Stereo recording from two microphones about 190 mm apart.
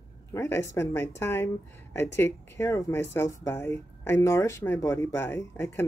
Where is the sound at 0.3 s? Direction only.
15° left (ahead or behind).